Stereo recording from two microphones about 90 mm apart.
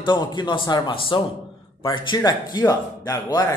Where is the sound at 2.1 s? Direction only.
50° left (ahead or behind).